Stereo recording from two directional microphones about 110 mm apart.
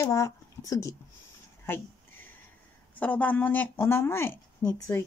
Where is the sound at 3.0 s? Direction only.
15° left (ahead or behind).